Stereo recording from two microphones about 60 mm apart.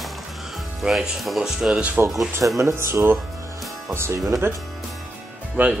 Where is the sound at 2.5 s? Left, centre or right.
Right.